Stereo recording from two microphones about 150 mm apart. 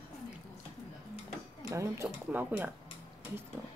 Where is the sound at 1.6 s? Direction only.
20° right (ahead or behind).